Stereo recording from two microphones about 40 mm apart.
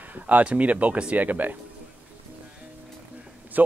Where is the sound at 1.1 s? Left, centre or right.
Right.